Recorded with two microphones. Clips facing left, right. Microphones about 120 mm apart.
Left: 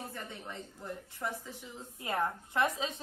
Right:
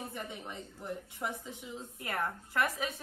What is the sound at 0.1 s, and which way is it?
A woman's voice, 15° right (ahead or behind).